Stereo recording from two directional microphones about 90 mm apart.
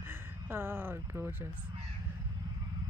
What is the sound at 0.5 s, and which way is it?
Speech, 25° right (ahead or behind).